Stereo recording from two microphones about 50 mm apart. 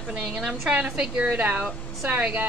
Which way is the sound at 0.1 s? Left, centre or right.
Centre.